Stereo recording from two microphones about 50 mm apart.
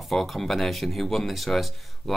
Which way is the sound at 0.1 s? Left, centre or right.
Centre.